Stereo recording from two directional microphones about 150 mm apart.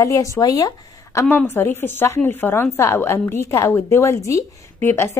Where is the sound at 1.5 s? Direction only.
15° left (ahead or behind).